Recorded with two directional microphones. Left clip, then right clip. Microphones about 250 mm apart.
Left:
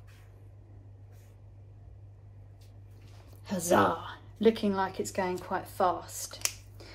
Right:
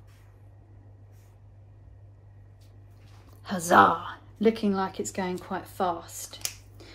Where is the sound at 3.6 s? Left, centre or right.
Right.